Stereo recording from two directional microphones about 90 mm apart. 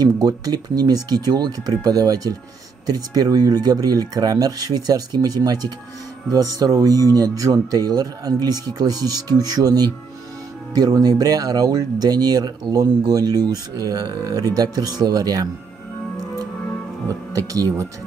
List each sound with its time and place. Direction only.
0.0 s speech: 45° right (ahead or behind)
17.3 s speech: 40° right (ahead or behind)